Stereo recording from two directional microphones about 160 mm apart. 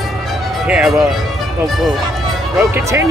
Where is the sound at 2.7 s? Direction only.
15° right (ahead or behind).